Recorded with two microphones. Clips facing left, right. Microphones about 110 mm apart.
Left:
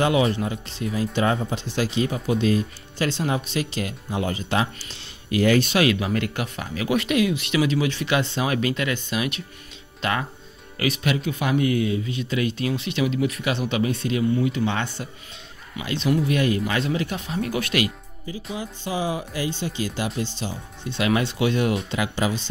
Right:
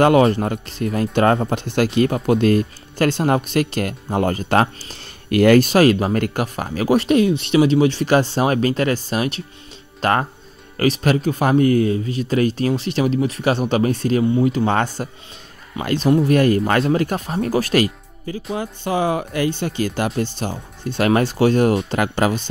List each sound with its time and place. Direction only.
0.0 s speech: 55° right (ahead or behind)
18.2 s speech: 55° right (ahead or behind)